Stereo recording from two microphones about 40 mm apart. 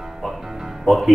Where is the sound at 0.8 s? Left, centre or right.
Centre.